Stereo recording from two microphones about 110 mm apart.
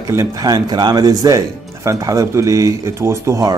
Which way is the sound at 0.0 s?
30° right (ahead or behind).